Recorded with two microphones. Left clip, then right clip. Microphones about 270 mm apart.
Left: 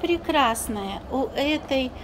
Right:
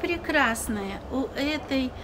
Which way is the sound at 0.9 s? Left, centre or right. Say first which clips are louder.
Left 4 dB; right.